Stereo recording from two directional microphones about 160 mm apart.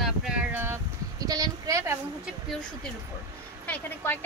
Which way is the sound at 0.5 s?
15° right (ahead or behind).